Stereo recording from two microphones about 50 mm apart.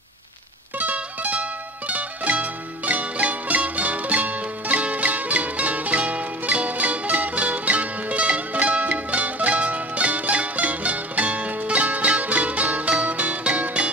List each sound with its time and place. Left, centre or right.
0.7 s music: right